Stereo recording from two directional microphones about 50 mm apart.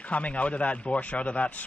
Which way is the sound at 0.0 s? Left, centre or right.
Left.